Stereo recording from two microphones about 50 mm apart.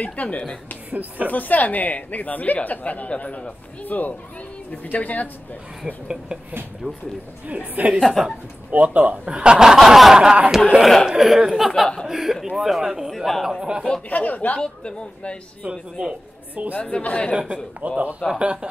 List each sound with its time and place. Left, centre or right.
0.0 s a man's voice: left
0.8 s speech: right
1.3 s speech: left
7.4 s speech: right
7.9 s speech: centre
8.7 s speech: right
9.7 s snicker: centre
11.1 s speech: centre
13.6 s snicker: centre
14.0 s speech: left
14.6 s a man's voice: centre
15.7 s snicker: centre
16.9 s a man's voice: left
17.3 s speech: centre